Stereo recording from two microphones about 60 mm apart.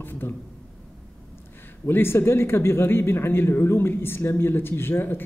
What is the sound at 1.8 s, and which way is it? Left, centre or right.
A man's voice, left.